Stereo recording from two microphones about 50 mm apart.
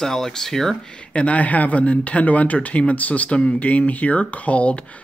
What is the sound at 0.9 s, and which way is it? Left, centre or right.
Speech, left.